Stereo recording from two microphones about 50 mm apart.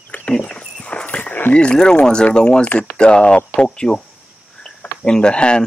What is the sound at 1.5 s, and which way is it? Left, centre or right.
Speech, centre.